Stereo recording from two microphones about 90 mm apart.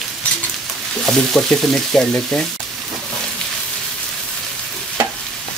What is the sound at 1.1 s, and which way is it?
Frying, 5° left (ahead or behind).